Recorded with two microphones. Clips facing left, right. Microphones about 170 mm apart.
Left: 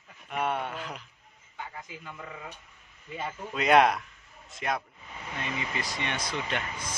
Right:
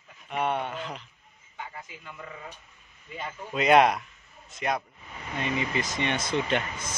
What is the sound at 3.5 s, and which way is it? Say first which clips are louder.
A man's voice: right 2 dB; centre (ahead or behind).